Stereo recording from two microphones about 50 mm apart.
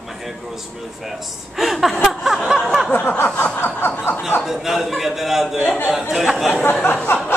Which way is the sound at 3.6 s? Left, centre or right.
Left.